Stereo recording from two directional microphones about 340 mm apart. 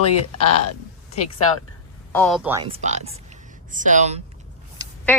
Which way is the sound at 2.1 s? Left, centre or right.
Centre.